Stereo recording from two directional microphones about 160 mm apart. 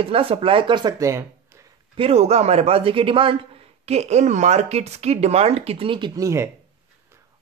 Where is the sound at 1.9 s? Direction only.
35° right (ahead or behind); by 6.5 s 20° right (ahead or behind).